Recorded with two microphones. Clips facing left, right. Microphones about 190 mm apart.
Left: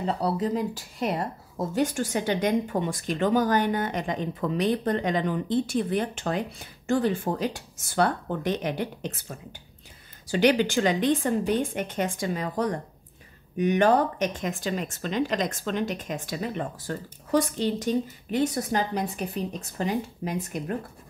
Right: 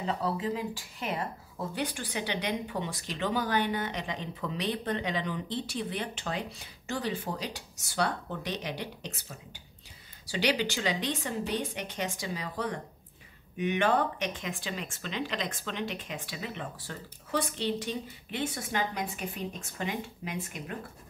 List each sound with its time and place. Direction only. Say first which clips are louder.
0.0 s speech: left 5 dB; 40° left (ahead or behind)